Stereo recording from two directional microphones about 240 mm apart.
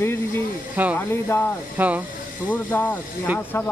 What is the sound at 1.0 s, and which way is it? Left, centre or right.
Speech, centre.